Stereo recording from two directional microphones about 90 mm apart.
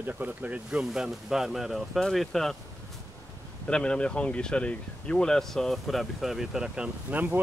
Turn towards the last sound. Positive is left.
turn(degrees=-20)  # may be behind; listen again after turning